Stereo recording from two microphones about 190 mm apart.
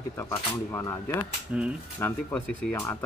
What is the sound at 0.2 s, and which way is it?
Speech, 10° left (ahead or behind).